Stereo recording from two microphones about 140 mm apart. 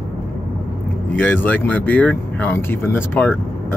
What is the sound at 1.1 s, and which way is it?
Speech, 15° left (ahead or behind).